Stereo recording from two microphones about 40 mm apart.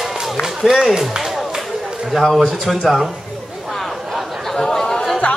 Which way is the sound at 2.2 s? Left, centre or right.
Centre.